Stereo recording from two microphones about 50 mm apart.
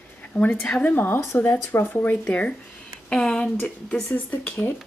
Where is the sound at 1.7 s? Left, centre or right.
Left.